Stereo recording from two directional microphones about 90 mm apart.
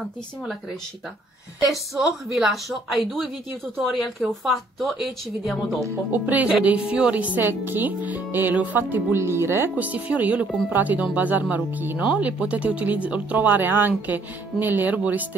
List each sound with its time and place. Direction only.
1.7 s speech: 5° right (ahead or behind)
6.1 s speech: 15° right (ahead or behind)
9.8 s speech: 15° right (ahead or behind)